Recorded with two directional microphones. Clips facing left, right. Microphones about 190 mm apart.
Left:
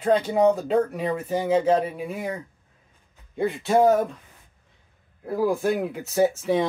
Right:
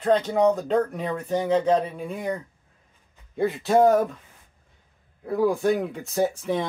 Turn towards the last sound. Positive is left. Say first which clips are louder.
# left 3 dB
turn(degrees=0)  # may be behind; listen again after turning